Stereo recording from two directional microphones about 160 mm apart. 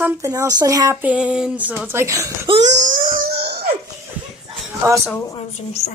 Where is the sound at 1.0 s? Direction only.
5° right (ahead or behind).